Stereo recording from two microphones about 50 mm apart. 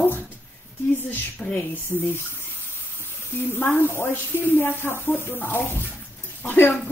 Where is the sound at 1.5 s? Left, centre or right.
Left.